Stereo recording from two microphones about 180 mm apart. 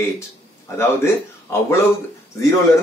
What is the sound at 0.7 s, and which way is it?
A man's voice, 15° left (ahead or behind).